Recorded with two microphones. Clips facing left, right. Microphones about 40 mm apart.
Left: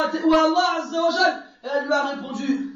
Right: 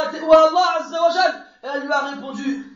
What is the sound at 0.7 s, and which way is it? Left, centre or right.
Speech, right.